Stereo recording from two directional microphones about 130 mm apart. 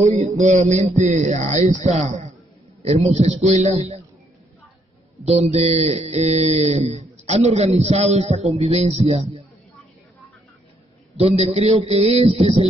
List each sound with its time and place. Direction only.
0.0 s speech: 60° right (ahead or behind)
5.5 s speech: 55° right (ahead or behind)
11.1 s a man's voice: 50° right (ahead or behind)